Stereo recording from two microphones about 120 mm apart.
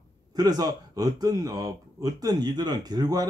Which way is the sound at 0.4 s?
30° right (ahead or behind).